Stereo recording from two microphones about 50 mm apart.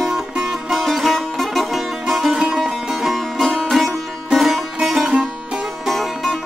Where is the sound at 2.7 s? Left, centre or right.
Centre.